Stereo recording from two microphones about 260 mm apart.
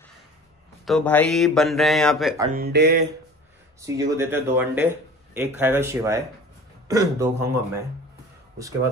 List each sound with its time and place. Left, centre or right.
0.8 s speech: centre
2.5 s speech: right
3.8 s speech: centre